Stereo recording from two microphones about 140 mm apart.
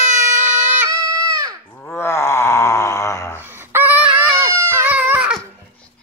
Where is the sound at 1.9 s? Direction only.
20° left (ahead or behind).